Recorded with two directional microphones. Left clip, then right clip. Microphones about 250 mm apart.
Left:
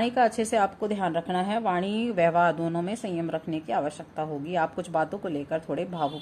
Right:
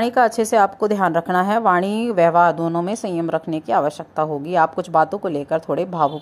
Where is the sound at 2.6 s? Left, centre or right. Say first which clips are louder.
Right 8 dB; centre.